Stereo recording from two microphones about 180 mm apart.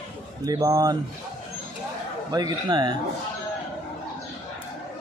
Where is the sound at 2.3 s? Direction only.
20° right (ahead or behind).